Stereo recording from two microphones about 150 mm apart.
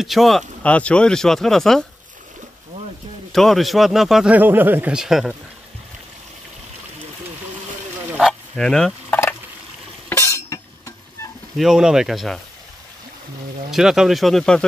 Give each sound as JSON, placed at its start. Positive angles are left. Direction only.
{"t": 0.0, "sound": "speech", "side_deg": 0}
{"t": 3.3, "sound": "speech", "side_deg": 0}
{"t": 8.1, "sound": "fowl", "side_deg": -5}
{"t": 10.0, "sound": "a sound", "side_deg": 20}
{"t": 11.5, "sound": "speech", "side_deg": -5}
{"t": 13.7, "sound": "speech", "side_deg": -5}